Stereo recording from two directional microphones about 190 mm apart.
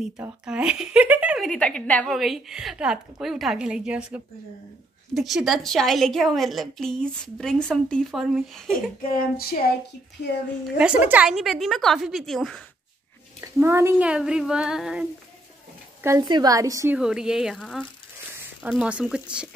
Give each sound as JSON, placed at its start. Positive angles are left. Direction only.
{"t": 0.0, "sound": "speech", "side_deg": -5}
{"t": 9.0, "sound": "speech", "side_deg": 50}
{"t": 11.1, "sound": "speech", "side_deg": -5}
{"t": 13.4, "sound": "speech", "side_deg": -15}
{"t": 16.0, "sound": "a woman's voice", "side_deg": -20}
{"t": 17.0, "sound": "speech", "side_deg": -5}